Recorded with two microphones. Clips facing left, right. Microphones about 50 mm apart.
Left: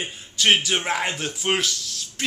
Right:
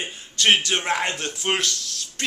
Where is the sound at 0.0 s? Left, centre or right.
Centre.